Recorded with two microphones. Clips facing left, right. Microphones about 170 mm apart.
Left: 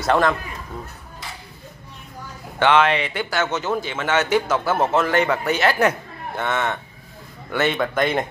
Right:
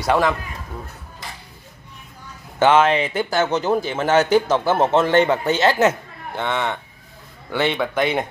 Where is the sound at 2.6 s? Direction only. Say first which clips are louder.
Right 2 dB; 35° right (ahead or behind); by 8.2 s 10° right (ahead or behind).